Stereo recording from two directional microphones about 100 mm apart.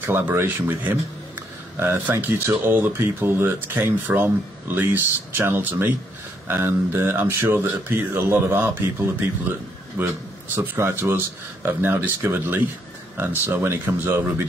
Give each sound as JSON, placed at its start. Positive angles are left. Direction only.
{"t": 0.0, "sound": "speech", "side_deg": -20}